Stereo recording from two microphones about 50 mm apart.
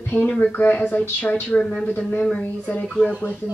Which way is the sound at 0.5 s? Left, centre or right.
Left.